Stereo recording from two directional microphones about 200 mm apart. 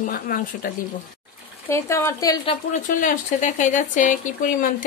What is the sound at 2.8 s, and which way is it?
Speech, 40° left (ahead or behind).